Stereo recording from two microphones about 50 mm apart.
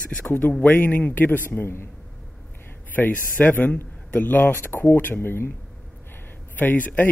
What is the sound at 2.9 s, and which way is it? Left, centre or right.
A man's voice, left.